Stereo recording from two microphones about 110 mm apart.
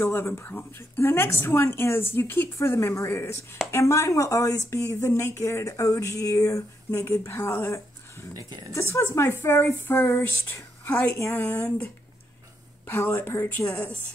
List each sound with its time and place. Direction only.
0.0 s speech: 20° left (ahead or behind)